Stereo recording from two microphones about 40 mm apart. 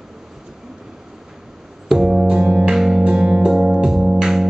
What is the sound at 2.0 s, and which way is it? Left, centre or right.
Music, centre.